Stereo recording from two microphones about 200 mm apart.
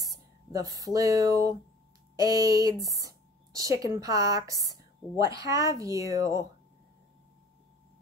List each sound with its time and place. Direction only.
0.7 s speech: 15° right (ahead or behind)